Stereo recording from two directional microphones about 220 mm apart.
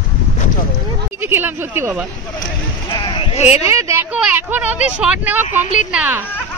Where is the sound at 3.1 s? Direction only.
30° left (ahead or behind).